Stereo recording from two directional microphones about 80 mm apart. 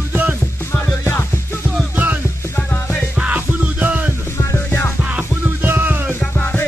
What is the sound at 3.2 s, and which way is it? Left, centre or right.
Music, centre.